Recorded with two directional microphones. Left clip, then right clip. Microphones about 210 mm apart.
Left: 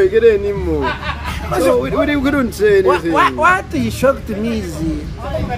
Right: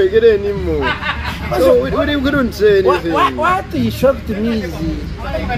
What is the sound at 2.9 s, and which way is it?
Speech, 10° right (ahead or behind).